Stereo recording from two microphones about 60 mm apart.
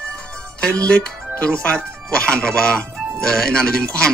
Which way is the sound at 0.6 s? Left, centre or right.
Centre.